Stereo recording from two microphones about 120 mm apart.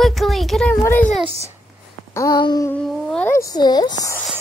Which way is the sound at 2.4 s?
40° left (ahead or behind).